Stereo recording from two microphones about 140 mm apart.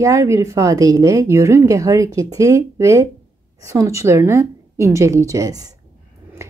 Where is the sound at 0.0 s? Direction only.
20° right (ahead or behind).